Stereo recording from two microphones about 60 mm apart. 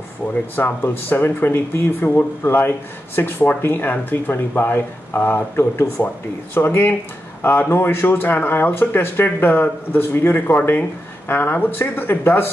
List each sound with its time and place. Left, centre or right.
0.3 s speech: left